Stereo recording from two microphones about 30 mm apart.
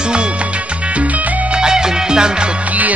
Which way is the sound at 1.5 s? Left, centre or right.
Right.